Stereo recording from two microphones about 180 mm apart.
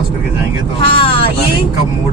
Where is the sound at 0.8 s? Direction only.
30° left (ahead or behind).